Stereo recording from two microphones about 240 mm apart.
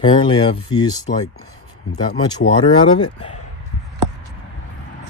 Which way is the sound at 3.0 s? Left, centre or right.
Left.